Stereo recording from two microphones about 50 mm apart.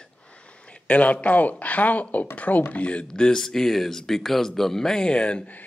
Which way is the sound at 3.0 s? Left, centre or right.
Centre.